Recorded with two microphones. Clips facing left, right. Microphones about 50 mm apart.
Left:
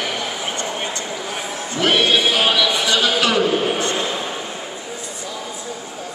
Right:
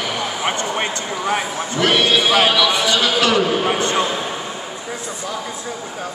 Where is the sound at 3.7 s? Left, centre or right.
Right.